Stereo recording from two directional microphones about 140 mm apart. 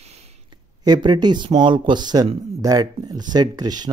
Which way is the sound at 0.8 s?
30° right (ahead or behind).